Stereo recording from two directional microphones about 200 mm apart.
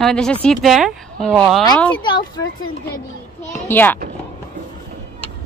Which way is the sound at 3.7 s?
10° left (ahead or behind).